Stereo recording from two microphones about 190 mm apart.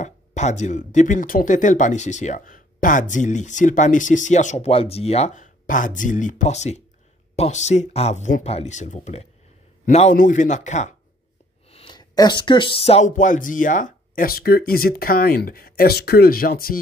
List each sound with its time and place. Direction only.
0.0 s speech: 40° left (ahead or behind)
11.7 s speech: 25° left (ahead or behind); by 16.8 s 50° left (ahead or behind)